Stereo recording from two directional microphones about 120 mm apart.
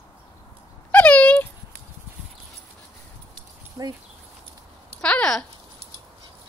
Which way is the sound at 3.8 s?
20° right (ahead or behind).